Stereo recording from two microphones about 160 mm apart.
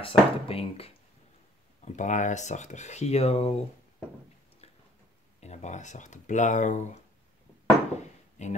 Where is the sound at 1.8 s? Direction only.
50° left (ahead or behind).